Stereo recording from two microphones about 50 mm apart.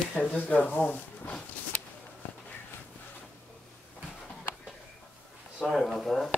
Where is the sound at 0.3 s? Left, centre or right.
Left.